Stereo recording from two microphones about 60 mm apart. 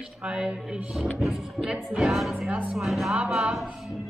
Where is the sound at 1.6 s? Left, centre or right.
Centre.